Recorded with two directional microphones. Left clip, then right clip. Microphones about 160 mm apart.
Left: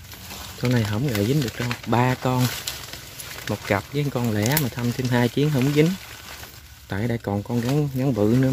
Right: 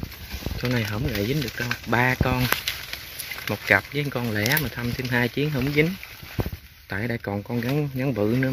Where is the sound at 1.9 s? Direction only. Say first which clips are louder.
Even; 15° left (ahead or behind).